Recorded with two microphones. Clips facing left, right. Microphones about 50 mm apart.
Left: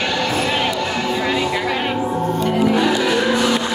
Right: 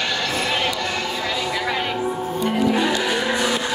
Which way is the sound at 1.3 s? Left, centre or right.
Left.